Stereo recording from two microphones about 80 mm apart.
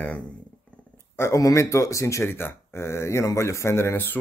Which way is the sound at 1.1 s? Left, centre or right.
Left.